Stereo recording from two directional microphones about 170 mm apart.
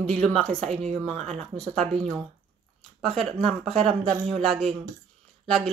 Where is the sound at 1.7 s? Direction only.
5° left (ahead or behind).